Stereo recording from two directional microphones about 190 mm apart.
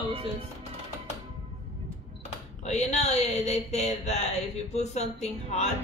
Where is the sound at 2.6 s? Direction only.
35° left (ahead or behind).